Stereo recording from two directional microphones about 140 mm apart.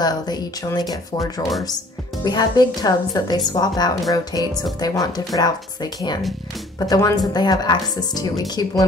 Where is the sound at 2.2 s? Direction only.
30° left (ahead or behind).